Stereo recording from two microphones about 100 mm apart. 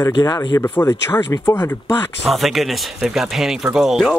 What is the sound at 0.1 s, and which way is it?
Speech, 40° left (ahead or behind).